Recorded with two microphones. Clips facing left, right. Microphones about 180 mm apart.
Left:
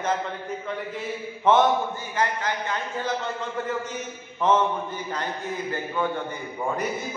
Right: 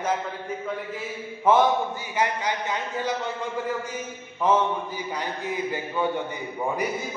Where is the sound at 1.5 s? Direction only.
10° right (ahead or behind).